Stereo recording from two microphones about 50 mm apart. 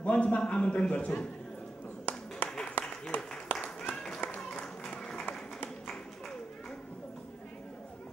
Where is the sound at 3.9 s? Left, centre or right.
Centre.